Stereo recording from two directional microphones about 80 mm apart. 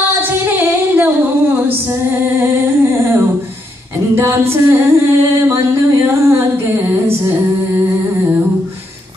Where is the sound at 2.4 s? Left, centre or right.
Right.